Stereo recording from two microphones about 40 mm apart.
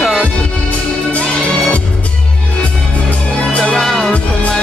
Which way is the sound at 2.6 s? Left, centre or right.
Left.